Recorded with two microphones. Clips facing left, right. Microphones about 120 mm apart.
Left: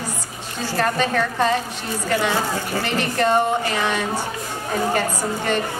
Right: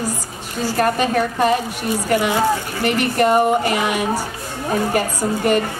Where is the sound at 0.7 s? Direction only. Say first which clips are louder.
Right 3 dB; 15° right (ahead or behind).